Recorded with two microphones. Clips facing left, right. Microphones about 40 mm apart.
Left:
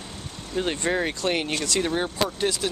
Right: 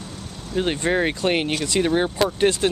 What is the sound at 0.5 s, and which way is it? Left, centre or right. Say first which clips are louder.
Speech: right 4 dB; centre.